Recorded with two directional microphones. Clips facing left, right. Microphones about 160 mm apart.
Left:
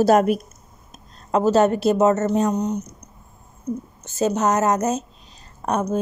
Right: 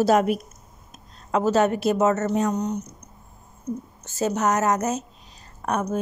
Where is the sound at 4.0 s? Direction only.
20° left (ahead or behind).